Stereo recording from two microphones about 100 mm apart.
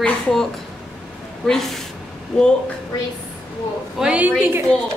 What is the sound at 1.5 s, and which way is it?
Speech, 5° left (ahead or behind).